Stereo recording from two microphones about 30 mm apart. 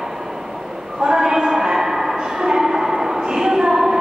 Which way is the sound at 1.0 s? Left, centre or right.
Right.